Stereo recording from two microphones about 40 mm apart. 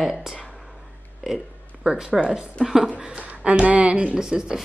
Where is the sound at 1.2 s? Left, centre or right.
Centre.